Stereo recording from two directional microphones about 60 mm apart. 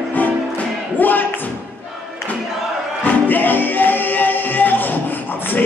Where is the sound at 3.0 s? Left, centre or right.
Left.